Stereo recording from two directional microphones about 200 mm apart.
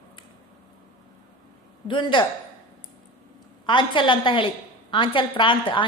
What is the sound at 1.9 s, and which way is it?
Speech, 25° left (ahead or behind).